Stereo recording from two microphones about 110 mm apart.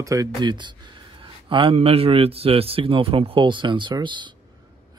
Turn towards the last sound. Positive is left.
turn(degrees=-45)  # may be behind; listen again after turning